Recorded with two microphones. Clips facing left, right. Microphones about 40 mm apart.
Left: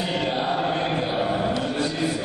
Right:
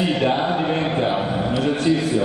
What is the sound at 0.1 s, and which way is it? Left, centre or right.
Chant, centre.